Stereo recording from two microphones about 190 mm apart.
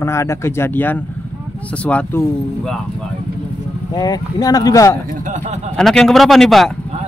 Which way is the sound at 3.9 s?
20° left (ahead or behind).